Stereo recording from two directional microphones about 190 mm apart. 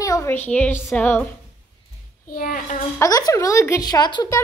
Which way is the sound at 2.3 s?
50° left (ahead or behind).